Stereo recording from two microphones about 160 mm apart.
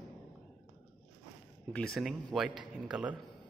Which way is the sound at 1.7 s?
5° left (ahead or behind).